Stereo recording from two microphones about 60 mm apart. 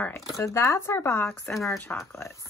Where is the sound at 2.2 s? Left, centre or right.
Left.